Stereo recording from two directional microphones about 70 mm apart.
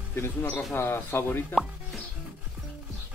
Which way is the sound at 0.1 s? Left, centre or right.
Left.